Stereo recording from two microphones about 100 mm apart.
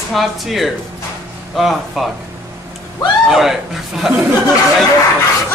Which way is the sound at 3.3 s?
5° right (ahead or behind).